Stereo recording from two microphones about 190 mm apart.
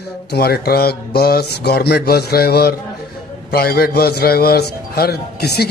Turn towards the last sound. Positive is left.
turn(degrees=60)  # may be behind; listen again after turning